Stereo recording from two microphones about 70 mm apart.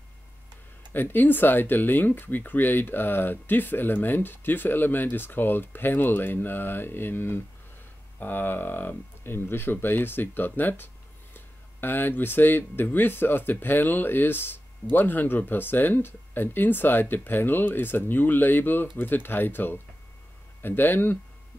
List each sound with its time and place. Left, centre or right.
0.9 s speech: left